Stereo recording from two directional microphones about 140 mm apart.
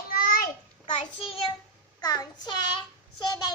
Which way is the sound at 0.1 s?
90° left.